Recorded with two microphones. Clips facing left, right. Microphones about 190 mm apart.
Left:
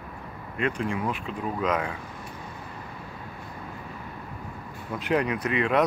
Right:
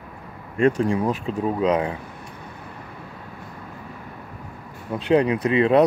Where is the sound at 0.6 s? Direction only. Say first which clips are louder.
Right 8 dB; 40° right (ahead or behind).